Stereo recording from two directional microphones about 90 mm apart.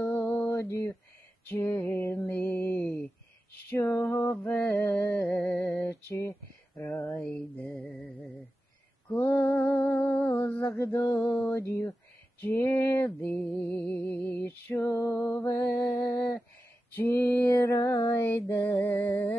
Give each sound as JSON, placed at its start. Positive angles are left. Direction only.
{"t": 0.0, "sound": "mantra", "side_deg": 20}
{"t": 1.5, "sound": "music", "side_deg": 20}
{"t": 2.2, "sound": "mantra", "side_deg": 20}
{"t": 4.0, "sound": "music", "side_deg": 25}
{"t": 4.4, "sound": "a sound", "side_deg": 15}
{"t": 7.1, "sound": "mantra", "side_deg": 15}
{"t": 9.1, "sound": "a sound", "side_deg": 20}
{"t": 11.5, "sound": "music", "side_deg": 25}